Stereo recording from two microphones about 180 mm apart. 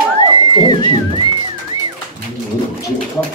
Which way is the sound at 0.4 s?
25° left (ahead or behind).